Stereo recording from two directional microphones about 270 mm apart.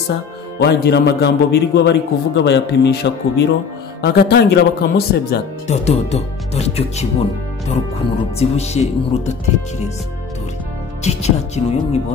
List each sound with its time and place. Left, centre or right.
0.6 s a man's voice: left
5.9 s speech: left
8.4 s speech: left
11.1 s speech: left